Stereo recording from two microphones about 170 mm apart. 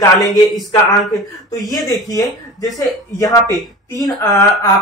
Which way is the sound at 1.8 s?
20° left (ahead or behind).